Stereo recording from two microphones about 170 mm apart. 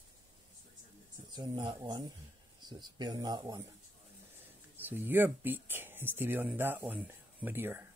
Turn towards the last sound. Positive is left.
turn(degrees=-15)  # may be behind; listen again after turning